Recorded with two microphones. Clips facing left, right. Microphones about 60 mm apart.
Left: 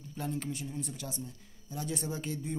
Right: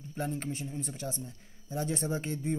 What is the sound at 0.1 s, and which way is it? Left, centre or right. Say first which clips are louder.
Speech: right 2 dB; right.